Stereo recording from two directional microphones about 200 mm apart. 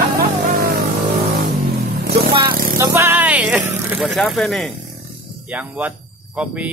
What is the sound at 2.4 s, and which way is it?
Vehicle, 15° right (ahead or behind).